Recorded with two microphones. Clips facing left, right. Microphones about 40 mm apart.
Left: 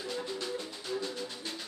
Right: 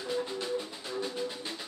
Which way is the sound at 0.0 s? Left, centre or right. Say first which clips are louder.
Right 3 dB; centre.